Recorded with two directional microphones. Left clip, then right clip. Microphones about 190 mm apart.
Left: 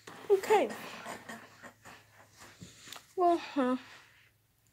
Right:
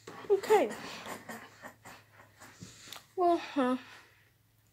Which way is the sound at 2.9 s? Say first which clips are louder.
Even; 10° left (ahead or behind).